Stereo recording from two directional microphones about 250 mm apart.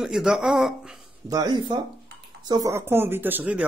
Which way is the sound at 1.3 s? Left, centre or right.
Centre.